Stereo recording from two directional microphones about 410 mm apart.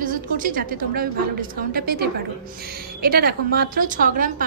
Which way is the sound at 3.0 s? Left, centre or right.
Right.